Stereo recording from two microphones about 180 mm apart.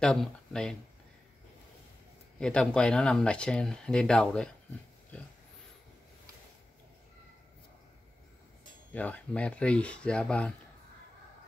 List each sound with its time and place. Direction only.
0.0 s speech: 5° left (ahead or behind)
2.4 s speech: 5° left (ahead or behind)
5.1 s dog: 10° left (ahead or behind)
8.9 s speech: 10° left (ahead or behind)